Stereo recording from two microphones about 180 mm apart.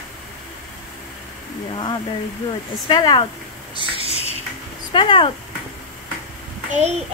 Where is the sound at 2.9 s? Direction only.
25° left (ahead or behind).